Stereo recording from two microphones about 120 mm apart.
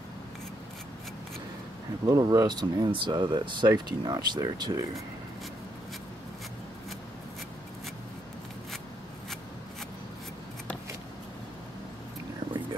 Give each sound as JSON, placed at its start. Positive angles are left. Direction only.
{"t": 2.0, "sound": "speech", "side_deg": -30}